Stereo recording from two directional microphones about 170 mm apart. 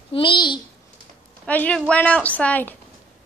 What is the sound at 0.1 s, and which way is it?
Speech, 30° left (ahead or behind).